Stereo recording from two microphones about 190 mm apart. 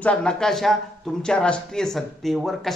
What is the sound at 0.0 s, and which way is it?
A man's voice, 5° left (ahead or behind).